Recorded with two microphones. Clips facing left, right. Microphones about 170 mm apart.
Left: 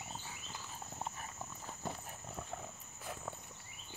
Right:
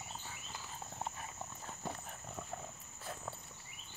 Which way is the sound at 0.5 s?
Centre (ahead or behind).